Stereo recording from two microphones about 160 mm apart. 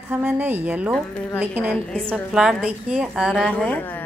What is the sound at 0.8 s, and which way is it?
Speech, 5° left (ahead or behind).